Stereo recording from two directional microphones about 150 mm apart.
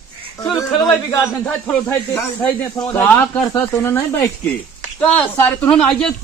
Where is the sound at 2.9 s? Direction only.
15° left (ahead or behind).